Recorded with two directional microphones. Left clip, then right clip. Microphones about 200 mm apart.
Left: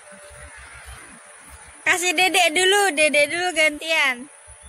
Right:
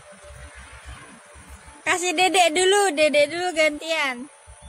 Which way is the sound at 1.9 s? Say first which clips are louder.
Left 2 dB; 5° right (ahead or behind).